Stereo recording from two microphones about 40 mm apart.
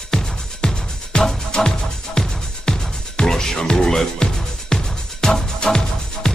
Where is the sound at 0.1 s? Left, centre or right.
Centre.